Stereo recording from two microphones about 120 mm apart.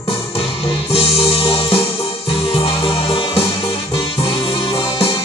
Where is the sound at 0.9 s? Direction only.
55° left (ahead or behind).